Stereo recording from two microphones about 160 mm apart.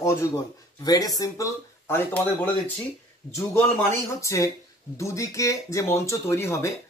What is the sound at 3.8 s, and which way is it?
Speech, 20° left (ahead or behind).